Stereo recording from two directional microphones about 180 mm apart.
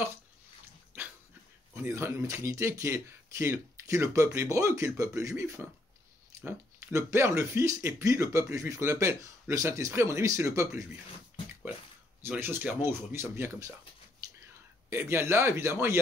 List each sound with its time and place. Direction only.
1.8 s speech: 15° right (ahead or behind)
12.2 s speech: 10° right (ahead or behind)
14.2 s whispering: 20° right (ahead or behind)
14.9 s speech: 15° right (ahead or behind)